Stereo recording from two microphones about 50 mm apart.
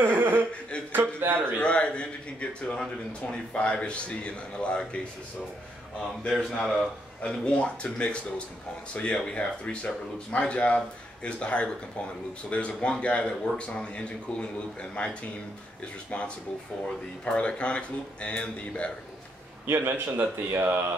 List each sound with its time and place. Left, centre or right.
0.0 s a sound: right
0.9 s a man's voice: right
1.6 s a man's voice: left
7.2 s a man's voice: left
17.2 s a man's voice: left
19.6 s a man's voice: right